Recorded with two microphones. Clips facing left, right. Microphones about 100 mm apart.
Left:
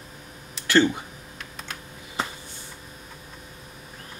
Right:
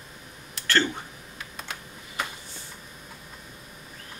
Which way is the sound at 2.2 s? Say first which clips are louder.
Left 3 dB; 30° left (ahead or behind).